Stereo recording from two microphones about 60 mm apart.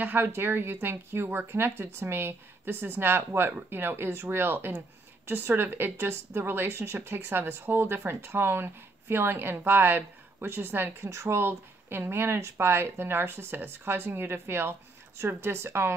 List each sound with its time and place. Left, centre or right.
0.0 s speech: right
11.1 s speech: right